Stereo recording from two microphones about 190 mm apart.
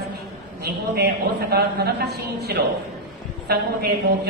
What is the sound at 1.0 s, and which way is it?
A woman's voice, 55° right (ahead or behind).